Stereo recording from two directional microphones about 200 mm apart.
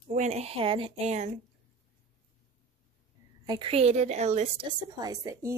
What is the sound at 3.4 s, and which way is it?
A woman's voice, 25° right (ahead or behind).